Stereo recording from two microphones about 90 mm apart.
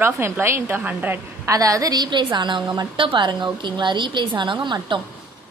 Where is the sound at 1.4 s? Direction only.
40° right (ahead or behind).